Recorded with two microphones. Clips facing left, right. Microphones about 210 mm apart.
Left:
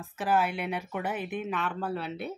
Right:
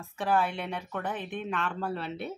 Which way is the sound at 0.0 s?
5° left (ahead or behind).